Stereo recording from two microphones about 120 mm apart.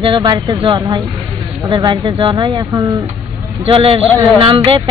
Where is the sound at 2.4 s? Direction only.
30° right (ahead or behind).